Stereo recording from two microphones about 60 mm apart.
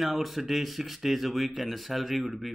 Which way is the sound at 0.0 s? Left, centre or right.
Centre.